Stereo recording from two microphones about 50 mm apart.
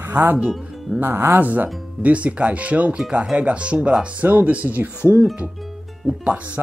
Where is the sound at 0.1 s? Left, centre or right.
Right.